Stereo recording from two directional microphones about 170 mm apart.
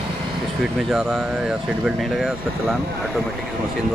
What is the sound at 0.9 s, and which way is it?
Speech, 5° right (ahead or behind).